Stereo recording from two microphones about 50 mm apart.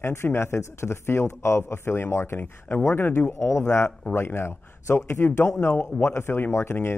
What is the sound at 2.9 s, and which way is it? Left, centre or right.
Speech, left.